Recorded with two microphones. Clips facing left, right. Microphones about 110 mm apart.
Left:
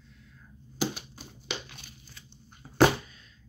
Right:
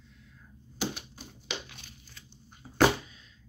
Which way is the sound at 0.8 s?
5° left (ahead or behind).